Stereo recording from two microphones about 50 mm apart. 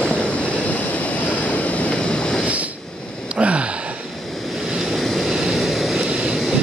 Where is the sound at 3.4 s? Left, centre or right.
Right.